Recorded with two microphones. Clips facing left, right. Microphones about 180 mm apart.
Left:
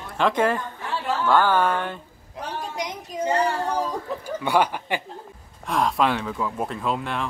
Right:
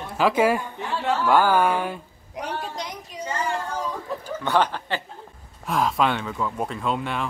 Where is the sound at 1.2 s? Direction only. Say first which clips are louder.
Even; 10° right (ahead or behind).